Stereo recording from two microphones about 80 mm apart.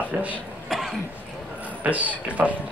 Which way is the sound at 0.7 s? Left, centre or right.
Centre.